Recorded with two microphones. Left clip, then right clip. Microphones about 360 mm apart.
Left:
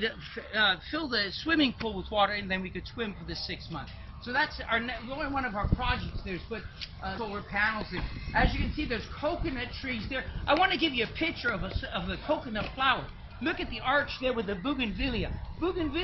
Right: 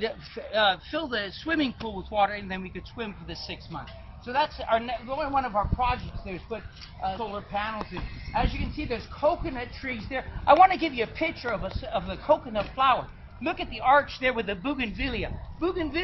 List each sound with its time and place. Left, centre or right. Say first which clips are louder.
0.6 s speech: right 3 dB; centre
7.0 s speech: right 5 dB; centre
14.6 s a man's voice: right 2 dB; right